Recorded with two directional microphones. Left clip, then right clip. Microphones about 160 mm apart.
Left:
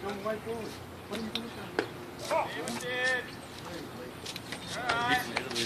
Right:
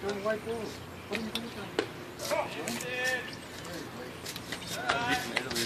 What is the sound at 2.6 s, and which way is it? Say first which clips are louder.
Speech: left 1 dB; 40° right (ahead or behind).